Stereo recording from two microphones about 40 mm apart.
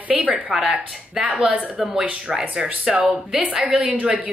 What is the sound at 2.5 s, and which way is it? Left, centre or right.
Speech, right.